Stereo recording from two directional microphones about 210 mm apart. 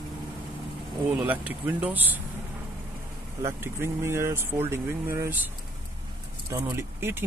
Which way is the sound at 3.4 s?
10° right (ahead or behind).